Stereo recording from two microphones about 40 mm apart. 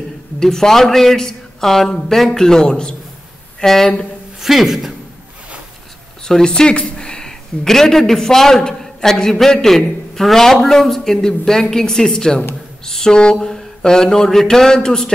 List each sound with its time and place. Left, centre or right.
0.4 s speech: centre
3.6 s speech: centre
4.4 s a woman's voice: centre
6.2 s speech: centre